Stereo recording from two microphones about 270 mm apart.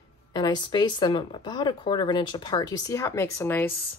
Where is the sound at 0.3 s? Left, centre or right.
Centre.